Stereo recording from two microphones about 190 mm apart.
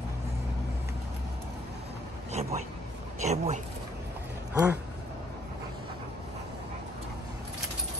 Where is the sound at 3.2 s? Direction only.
35° right (ahead or behind).